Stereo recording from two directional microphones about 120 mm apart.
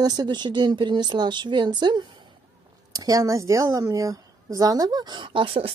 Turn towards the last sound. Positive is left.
turn(degrees=-45)  # may be behind; listen again after turning